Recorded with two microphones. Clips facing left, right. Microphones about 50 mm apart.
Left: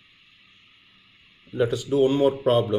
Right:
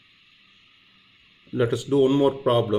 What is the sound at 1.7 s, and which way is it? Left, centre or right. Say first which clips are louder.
Speech: right 2 dB; centre.